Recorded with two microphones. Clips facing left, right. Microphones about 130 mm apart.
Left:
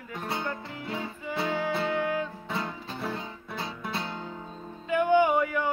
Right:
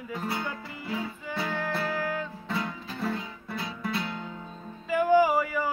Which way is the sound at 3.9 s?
25° left (ahead or behind).